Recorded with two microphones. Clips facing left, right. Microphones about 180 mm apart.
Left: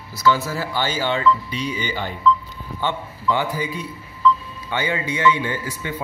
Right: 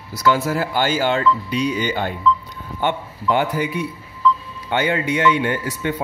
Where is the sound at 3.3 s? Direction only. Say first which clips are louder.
Right 6 dB; 60° right (ahead or behind).